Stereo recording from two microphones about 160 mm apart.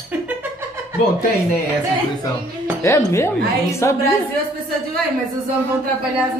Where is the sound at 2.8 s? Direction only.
15° left (ahead or behind).